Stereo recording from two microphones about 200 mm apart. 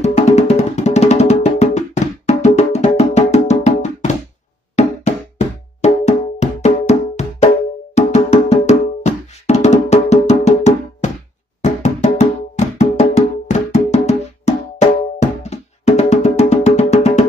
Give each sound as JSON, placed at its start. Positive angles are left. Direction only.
{"t": 0.0, "sound": "music", "side_deg": 35}